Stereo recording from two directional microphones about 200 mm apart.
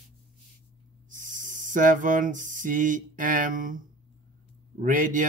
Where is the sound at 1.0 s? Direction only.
40° right (ahead or behind).